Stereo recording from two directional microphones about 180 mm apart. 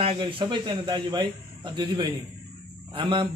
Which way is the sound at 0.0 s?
30° right (ahead or behind).